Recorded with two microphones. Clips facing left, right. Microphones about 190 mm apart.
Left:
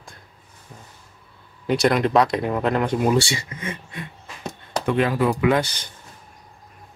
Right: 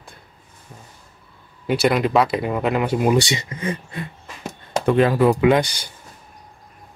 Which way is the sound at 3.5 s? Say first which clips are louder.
Right 5 dB; 35° right (ahead or behind).